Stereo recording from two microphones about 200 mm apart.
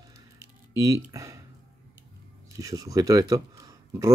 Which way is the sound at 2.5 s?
15° right (ahead or behind).